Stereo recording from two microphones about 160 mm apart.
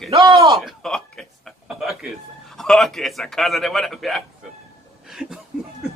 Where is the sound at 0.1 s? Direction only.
35° right (ahead or behind).